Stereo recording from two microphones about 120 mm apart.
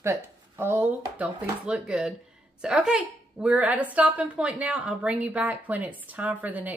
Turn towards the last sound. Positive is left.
turn(degrees=-15)  # may be behind; listen again after turning